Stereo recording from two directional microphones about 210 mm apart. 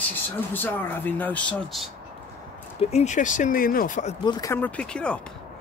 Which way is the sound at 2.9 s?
35° left (ahead or behind).